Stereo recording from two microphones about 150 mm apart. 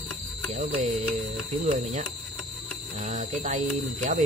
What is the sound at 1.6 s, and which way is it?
Speech, 60° right (ahead or behind).